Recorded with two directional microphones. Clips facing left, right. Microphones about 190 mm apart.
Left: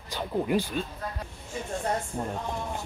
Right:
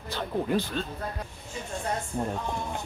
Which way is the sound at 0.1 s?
10° left (ahead or behind).